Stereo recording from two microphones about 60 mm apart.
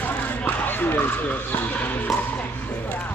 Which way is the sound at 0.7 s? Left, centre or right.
Left.